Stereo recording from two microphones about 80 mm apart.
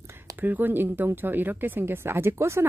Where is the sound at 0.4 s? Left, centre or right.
Right.